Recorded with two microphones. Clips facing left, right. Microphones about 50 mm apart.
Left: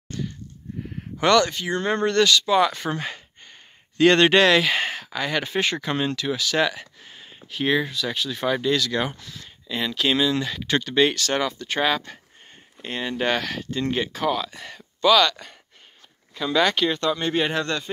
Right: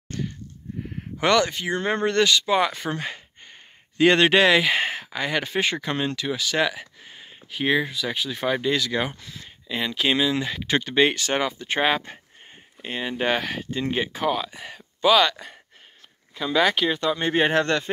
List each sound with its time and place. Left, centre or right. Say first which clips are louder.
0.1 s a sound: even; right
1.1 s speech: left 2 dB; centre
2.7 s speech: left 1 dB; centre; by 12.2 s right
12.8 s speech: even; centre
17.2 s speech: right 2 dB; right
17.5 s speech: right 4 dB; right